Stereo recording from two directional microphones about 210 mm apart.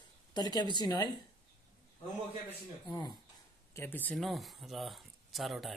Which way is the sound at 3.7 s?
10° left (ahead or behind).